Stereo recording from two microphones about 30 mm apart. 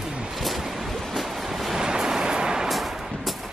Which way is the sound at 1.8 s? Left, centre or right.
Centre.